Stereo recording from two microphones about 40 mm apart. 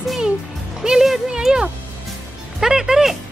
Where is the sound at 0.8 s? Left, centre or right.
Centre.